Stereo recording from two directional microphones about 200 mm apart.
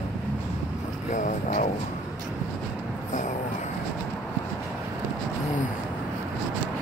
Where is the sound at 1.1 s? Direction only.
40° left (ahead or behind).